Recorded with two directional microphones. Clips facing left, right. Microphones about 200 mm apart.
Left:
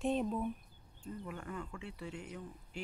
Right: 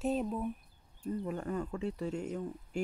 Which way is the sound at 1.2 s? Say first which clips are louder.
Right 7 dB; 35° right (ahead or behind).